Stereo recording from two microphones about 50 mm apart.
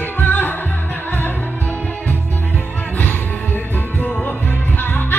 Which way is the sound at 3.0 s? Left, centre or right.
Left.